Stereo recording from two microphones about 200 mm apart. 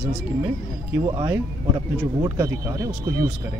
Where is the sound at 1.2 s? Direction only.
15° right (ahead or behind).